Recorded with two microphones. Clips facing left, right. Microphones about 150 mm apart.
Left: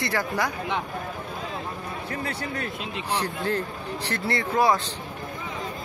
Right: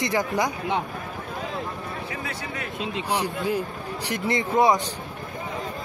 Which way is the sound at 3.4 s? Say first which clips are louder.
Right 1 dB; 10° right (ahead or behind).